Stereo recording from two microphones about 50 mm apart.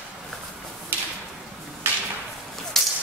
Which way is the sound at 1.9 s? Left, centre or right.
Right.